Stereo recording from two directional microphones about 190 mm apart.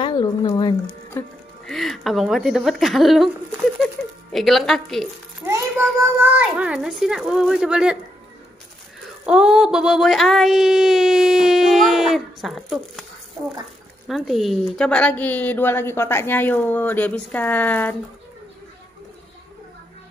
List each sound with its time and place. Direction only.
0.0 s speech: 25° left (ahead or behind)
1.7 s speech: centre (ahead or behind)
5.9 s speech: 10° right (ahead or behind)
9.2 s speech: 5° right (ahead or behind)
14.0 s a woman's voice: centre (ahead or behind)